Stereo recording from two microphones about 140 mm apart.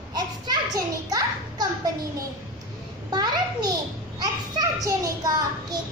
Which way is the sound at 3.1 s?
30° right (ahead or behind).